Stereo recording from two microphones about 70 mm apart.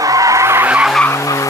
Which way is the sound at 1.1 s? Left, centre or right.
Left.